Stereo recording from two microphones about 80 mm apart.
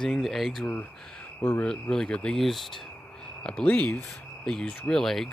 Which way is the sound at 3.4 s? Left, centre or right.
Centre.